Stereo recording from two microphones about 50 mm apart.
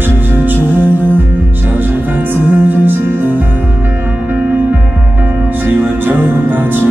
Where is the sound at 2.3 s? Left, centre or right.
Right.